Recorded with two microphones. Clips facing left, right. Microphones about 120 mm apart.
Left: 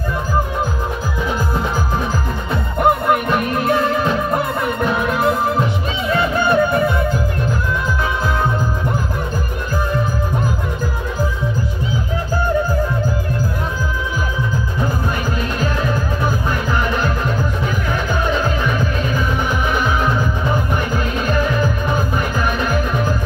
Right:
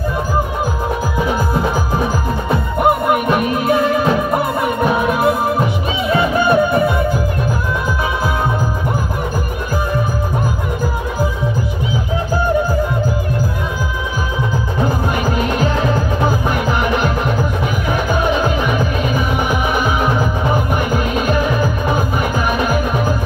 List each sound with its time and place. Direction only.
2.8 s music: 5° right (ahead or behind)
15.3 s music: 20° right (ahead or behind)